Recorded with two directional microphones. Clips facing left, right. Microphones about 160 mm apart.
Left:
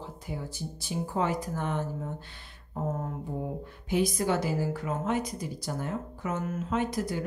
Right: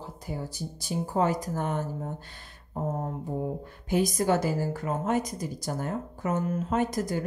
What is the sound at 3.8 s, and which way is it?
Speech, 45° right (ahead or behind).